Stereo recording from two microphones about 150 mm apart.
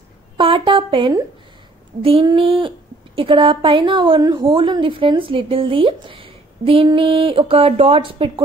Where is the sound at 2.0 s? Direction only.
35° right (ahead or behind).